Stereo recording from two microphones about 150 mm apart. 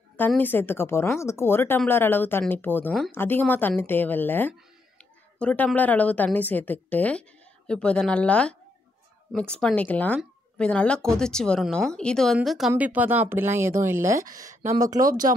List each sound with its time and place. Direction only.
0.4 s a woman's voice: 15° left (ahead or behind); by 15.3 s 25° right (ahead or behind)